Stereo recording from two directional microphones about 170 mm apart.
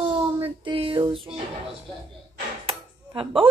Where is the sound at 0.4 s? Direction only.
30° right (ahead or behind).